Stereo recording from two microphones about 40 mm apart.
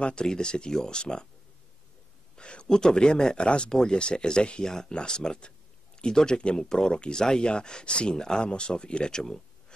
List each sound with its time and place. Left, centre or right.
0.0 s speech: left
2.3 s speech: left